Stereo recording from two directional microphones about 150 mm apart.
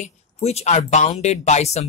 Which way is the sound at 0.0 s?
45° left (ahead or behind).